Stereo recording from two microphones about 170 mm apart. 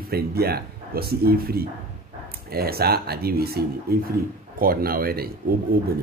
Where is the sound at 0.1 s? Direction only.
65° right (ahead or behind).